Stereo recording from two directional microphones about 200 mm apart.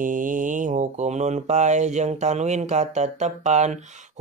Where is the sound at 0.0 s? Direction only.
40° right (ahead or behind).